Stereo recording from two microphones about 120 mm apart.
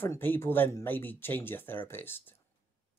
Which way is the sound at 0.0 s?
15° left (ahead or behind).